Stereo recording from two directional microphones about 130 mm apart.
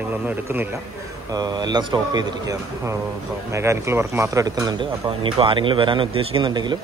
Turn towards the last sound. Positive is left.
turn(degrees=-35)  # may be behind; listen again after turning